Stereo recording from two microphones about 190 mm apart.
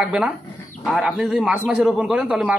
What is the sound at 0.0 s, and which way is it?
A man's voice, 5° right (ahead or behind).